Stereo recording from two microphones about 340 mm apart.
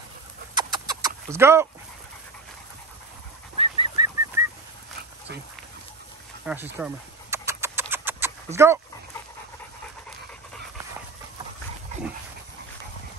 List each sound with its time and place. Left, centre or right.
0.6 s chicken: centre
3.5 s bird: centre
4.4 s chicken: centre
6.4 s a sound: centre